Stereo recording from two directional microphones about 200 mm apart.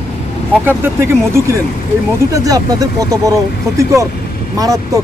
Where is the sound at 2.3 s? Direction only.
15° right (ahead or behind).